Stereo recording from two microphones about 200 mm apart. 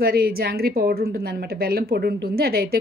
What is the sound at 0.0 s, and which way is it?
A woman's voice, 50° right (ahead or behind).